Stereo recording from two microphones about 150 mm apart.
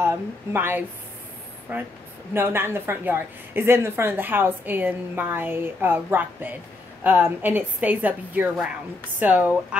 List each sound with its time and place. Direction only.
0.0 s a woman's voice: 15° right (ahead or behind)